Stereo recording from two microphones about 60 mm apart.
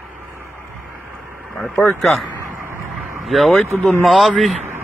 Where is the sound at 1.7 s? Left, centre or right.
Left.